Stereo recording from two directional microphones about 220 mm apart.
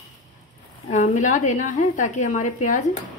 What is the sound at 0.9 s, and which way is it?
A woman's voice, 35° left (ahead or behind).